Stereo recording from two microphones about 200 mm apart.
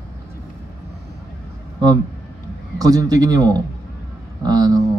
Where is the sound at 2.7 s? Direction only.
20° right (ahead or behind).